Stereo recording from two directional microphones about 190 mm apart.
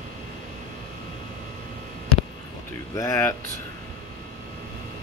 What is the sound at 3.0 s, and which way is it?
Speech, 15° left (ahead or behind).